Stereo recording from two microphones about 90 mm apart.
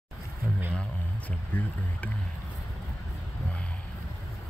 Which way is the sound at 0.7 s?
15° left (ahead or behind).